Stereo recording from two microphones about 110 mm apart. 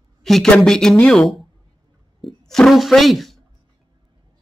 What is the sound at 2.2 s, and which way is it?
Speech, 5° left (ahead or behind).